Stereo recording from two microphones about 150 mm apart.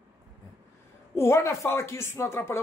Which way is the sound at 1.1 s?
15° left (ahead or behind).